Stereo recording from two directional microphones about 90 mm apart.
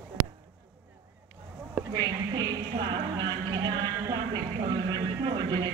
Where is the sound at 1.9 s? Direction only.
50° right (ahead or behind).